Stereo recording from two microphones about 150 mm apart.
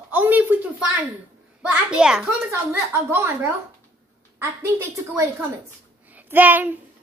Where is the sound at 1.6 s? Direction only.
5° right (ahead or behind).